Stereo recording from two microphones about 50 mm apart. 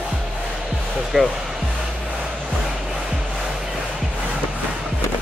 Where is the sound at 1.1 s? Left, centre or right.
Centre.